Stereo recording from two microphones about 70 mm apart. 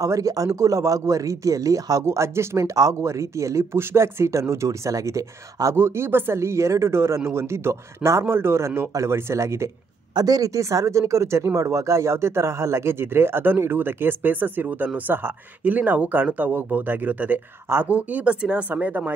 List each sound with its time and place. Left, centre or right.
0.0 s a man's voice: right
2.0 s speech: right
5.8 s speech: right
10.1 s speech: right